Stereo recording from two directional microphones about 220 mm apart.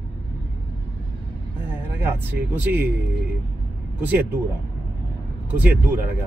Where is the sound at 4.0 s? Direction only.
10° right (ahead or behind).